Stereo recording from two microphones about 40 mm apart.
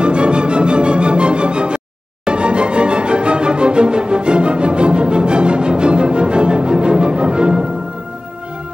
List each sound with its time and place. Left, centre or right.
0.0 s music: right